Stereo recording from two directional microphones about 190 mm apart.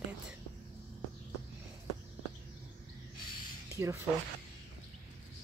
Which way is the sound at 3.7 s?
15° right (ahead or behind).